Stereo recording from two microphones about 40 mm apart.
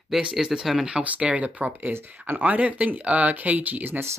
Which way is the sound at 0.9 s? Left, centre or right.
Right.